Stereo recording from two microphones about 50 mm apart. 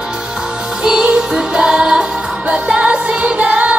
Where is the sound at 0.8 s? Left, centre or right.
Centre.